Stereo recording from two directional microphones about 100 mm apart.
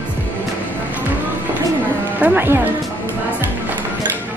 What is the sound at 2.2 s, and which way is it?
Speech, 20° right (ahead or behind).